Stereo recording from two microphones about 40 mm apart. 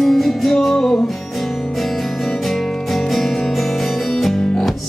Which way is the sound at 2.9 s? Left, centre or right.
Centre.